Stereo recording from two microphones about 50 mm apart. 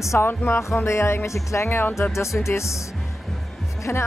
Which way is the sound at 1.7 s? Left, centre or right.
Left.